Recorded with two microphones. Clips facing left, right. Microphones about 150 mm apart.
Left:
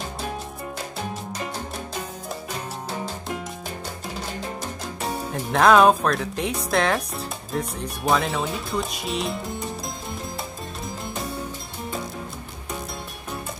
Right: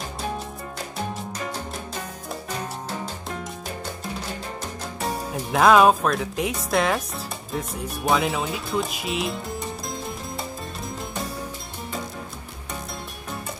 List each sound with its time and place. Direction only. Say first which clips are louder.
5.0 s speech: even; centre (ahead or behind)
9.8 s music: right 1 dB; centre (ahead or behind)